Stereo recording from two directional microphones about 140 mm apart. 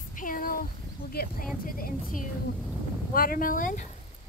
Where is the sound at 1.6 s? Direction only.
80° left.